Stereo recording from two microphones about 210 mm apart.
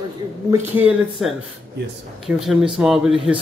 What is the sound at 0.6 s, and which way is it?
Speech, 5° right (ahead or behind).